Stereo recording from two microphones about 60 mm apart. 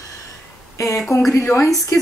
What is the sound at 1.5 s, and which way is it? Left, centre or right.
Speech, left.